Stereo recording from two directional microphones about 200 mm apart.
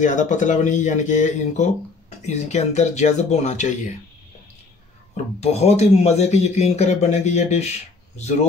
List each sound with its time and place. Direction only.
0.0 s speech: 40° left (ahead or behind)
5.1 s speech: 30° left (ahead or behind)